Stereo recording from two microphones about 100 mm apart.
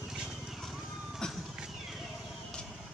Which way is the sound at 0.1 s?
5° right (ahead or behind).